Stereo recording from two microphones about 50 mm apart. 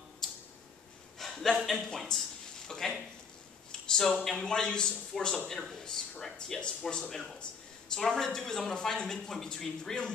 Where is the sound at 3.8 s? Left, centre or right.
Centre.